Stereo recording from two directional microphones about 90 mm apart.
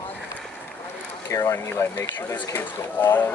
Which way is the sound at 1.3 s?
35° left (ahead or behind).